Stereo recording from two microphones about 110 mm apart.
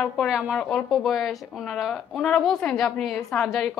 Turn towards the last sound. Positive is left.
turn(degrees=5)  # may be behind; listen again after turning